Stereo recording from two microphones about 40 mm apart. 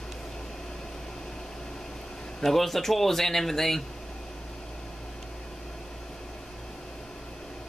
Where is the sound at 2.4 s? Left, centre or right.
Centre.